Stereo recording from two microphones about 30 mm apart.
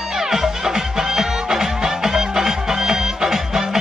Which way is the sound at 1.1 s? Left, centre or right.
Centre.